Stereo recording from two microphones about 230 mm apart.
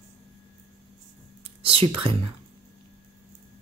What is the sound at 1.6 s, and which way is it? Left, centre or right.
Speech, right.